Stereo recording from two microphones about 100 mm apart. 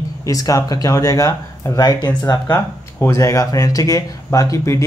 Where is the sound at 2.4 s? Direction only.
25° left (ahead or behind).